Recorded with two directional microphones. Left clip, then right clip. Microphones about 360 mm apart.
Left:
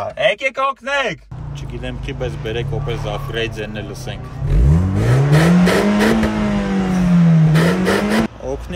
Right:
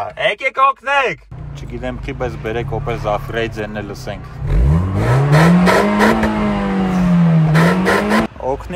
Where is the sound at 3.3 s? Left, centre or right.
Centre.